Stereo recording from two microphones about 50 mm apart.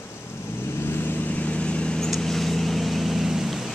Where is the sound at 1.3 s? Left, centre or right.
Left.